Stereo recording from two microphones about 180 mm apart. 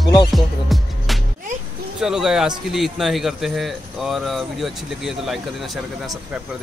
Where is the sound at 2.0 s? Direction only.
5° right (ahead or behind).